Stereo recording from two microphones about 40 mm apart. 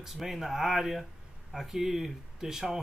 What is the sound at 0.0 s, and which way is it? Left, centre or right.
Speech, centre.